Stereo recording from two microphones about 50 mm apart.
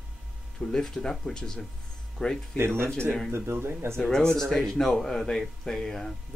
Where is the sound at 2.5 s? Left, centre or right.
Right.